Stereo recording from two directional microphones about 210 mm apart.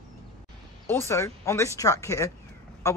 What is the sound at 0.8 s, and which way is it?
Speech, 10° left (ahead or behind).